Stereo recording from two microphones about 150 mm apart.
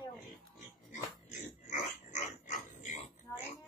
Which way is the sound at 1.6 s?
55° left (ahead or behind).